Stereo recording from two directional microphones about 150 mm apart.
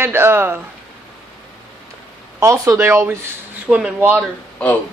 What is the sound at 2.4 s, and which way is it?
Speech, 20° right (ahead or behind).